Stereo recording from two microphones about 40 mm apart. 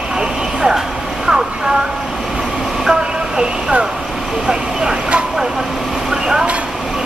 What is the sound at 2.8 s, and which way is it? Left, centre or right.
Train, centre.